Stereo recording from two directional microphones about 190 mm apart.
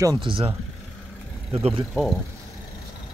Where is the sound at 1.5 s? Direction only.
30° right (ahead or behind).